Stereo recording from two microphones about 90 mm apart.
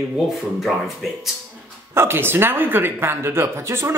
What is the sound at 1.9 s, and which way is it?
Speech, 25° right (ahead or behind).